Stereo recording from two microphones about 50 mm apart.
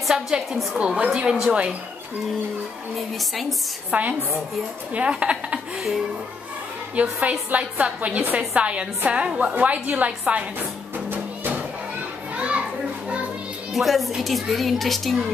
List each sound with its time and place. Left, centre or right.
0.1 s a child's voice: centre
0.7 s a woman's voice: right
1.0 s speech: centre
3.0 s a child's voice: centre
3.9 s a woman's voice: right
4.9 s a woman's voice: right
7.0 s a woman's voice: right
11.1 s music: right
12.4 s children playing: right
13.7 s a child's voice: centre